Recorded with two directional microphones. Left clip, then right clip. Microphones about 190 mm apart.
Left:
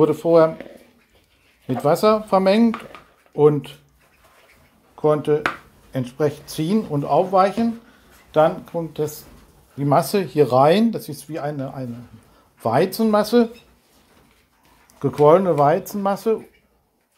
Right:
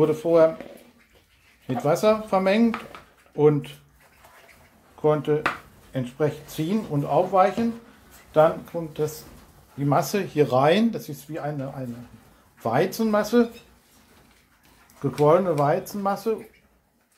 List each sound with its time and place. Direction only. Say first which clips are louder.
0.0 s speech: left 3 dB; 45° left (ahead or behind)
1.9 s speech: left 4 dB; 45° left (ahead or behind)
4.9 s speech: left 4 dB; 45° left (ahead or behind)
11.1 s speech: left 4 dB; 40° left (ahead or behind)
12.5 s a sound: left 4 dB; 35° left (ahead or behind)
12.9 s speech: left 4 dB; 45° left (ahead or behind)
15.0 s speech: left 5 dB; 40° left (ahead or behind)